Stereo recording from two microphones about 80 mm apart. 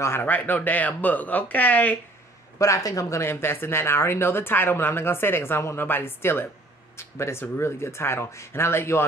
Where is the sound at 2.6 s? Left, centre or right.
Left.